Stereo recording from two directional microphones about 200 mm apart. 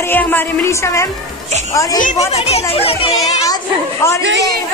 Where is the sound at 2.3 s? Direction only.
30° left (ahead or behind).